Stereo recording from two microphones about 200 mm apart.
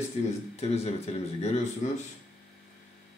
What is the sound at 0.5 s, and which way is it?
Speech, 30° left (ahead or behind).